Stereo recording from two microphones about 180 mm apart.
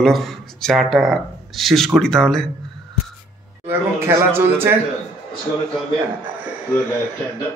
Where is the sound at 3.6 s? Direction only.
15° right (ahead or behind).